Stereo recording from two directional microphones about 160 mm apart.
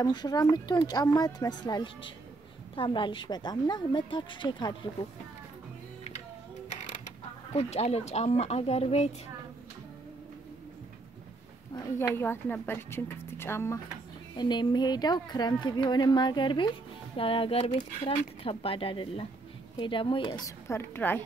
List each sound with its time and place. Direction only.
0.0 s a woman's voice: 25° left (ahead or behind)
7.5 s speech: 40° left (ahead or behind)
12.2 s speech: 10° left (ahead or behind)
14.3 s a woman's voice: 30° left (ahead or behind)